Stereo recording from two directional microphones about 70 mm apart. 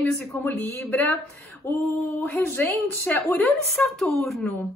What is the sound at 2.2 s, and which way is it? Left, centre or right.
Speech, left.